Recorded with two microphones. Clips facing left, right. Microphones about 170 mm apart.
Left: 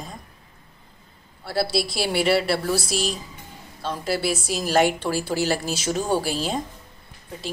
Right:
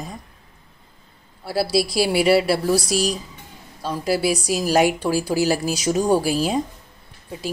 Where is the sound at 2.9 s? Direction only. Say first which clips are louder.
Right 4 dB; 40° right (ahead or behind).